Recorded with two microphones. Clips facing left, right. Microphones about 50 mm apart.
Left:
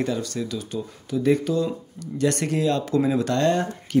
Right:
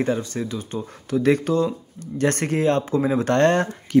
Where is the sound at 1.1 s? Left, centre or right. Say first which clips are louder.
Right 2 dB; right.